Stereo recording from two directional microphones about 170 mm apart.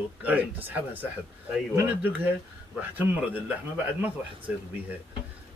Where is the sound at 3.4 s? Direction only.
10° right (ahead or behind).